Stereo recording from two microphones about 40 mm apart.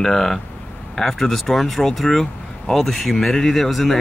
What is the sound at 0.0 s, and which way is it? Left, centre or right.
Speech, centre.